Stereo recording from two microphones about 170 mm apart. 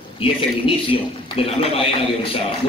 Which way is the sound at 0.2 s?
30° left (ahead or behind).